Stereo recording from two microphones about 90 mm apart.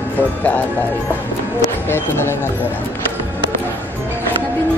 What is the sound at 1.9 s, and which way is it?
Speech, 25° left (ahead or behind).